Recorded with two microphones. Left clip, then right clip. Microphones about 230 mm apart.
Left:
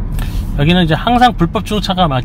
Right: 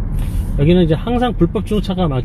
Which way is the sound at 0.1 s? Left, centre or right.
Left.